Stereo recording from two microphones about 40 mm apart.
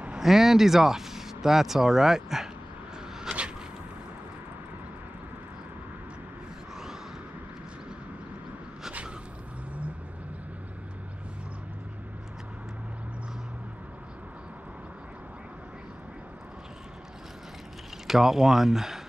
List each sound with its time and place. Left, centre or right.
0.2 s speech: centre
18.0 s speech: centre